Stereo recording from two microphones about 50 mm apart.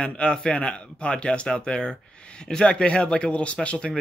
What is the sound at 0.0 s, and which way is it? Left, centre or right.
Speech, centre.